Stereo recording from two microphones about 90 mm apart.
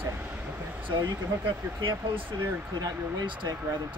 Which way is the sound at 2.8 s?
45° right (ahead or behind).